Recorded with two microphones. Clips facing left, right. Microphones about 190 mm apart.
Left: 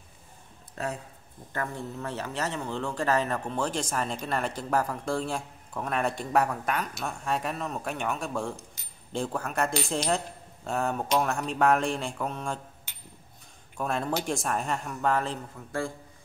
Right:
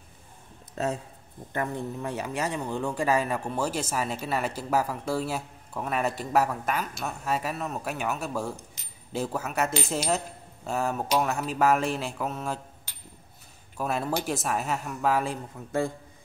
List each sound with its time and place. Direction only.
0.8 s a man's voice: 25° right (ahead or behind); by 12.5 s 5° right (ahead or behind)
13.7 s speech: 5° right (ahead or behind)
15.6 s a man's voice: 20° right (ahead or behind)